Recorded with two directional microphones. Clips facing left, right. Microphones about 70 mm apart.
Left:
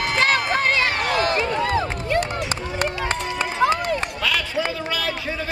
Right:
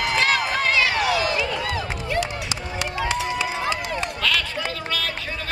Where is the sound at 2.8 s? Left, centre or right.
Left.